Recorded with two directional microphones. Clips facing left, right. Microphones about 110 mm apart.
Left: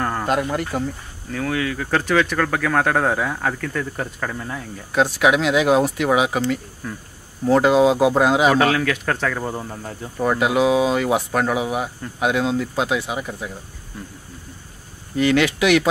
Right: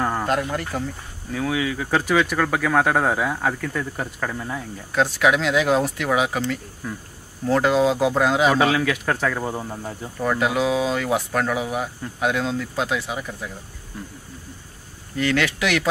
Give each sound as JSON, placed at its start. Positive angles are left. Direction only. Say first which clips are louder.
{"t": 0.0, "sound": "a sound", "louder": "even", "side_deg": -5}
{"t": 0.3, "sound": "speech", "louder": "left 2 dB", "side_deg": 15}
{"t": 1.3, "sound": "speech", "louder": "even", "side_deg": -10}
{"t": 4.9, "sound": "speech", "louder": "left 2 dB", "side_deg": 15}
{"t": 7.4, "sound": "speech", "louder": "left 4 dB", "side_deg": 20}
{"t": 8.5, "sound": "speech", "louder": "left 1 dB", "side_deg": -5}
{"t": 10.1, "sound": "speech", "louder": "left 3 dB", "side_deg": 20}
{"t": 15.1, "sound": "speech", "louder": "left 4 dB", "side_deg": 15}